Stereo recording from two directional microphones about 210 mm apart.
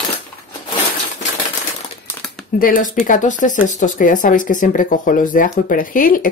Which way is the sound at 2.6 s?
40° left (ahead or behind).